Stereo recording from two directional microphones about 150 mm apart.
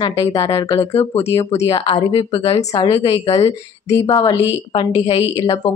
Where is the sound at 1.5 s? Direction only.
40° left (ahead or behind).